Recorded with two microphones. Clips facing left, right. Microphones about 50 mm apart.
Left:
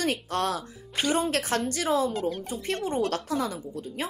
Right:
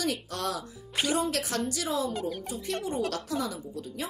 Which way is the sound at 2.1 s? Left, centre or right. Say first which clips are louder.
Left 3 dB; centre.